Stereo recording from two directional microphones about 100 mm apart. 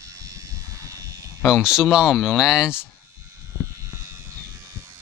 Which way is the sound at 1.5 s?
5° right (ahead or behind).